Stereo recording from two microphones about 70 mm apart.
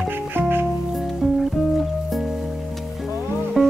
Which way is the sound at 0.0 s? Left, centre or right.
Right.